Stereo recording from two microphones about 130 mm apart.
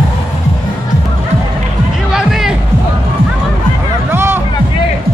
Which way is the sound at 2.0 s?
5° right (ahead or behind).